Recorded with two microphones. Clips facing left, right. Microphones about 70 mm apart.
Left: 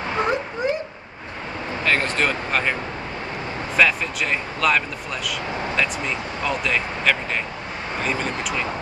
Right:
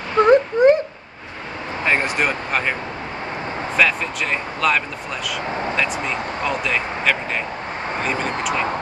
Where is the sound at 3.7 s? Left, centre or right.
Centre.